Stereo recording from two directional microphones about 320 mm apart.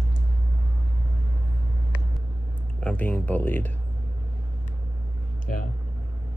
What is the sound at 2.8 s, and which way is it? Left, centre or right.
Speech, centre.